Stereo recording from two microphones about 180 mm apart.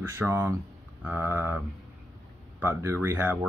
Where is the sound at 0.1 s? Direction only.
15° right (ahead or behind).